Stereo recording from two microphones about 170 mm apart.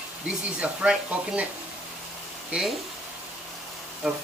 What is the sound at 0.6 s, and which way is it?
Speech, 5° right (ahead or behind).